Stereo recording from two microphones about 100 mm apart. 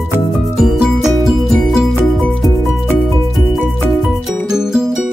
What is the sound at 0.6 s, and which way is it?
Music, 5° right (ahead or behind).